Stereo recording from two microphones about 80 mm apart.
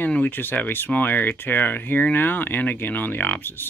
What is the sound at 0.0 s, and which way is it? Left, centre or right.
Speech, left.